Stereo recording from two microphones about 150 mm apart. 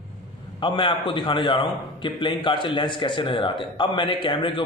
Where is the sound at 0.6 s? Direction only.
35° left (ahead or behind).